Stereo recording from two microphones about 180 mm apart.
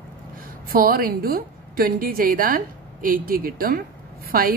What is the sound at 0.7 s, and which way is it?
A woman's voice, 55° right (ahead or behind).